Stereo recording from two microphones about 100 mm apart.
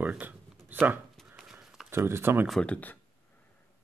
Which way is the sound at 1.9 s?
25° right (ahead or behind).